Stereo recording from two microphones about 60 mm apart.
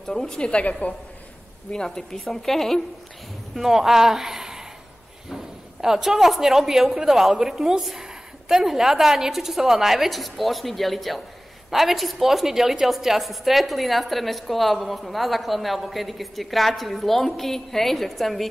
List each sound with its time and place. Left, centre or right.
0.0 s a woman's voice: centre
1.7 s a woman's voice: centre
3.5 s a woman's voice: centre